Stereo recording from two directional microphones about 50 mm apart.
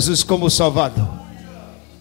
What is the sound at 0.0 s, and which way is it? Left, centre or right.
A man's voice, left.